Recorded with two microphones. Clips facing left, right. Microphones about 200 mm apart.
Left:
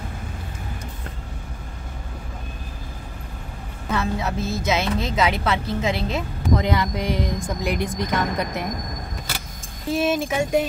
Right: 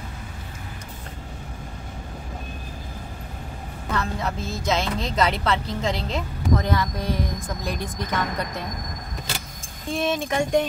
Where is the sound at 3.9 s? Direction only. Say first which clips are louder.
Left 3 dB; 10° left (ahead or behind).